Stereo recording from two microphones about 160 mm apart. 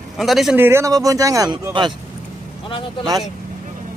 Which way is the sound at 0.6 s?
15° right (ahead or behind).